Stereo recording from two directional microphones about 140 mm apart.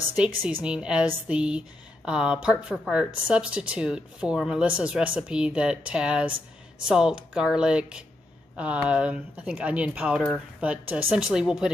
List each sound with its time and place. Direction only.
0.1 s speech: 10° right (ahead or behind)